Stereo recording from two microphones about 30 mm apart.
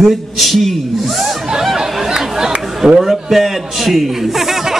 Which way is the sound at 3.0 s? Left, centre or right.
Centre.